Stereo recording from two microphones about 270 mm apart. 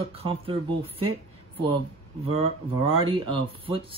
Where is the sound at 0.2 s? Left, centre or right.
Centre.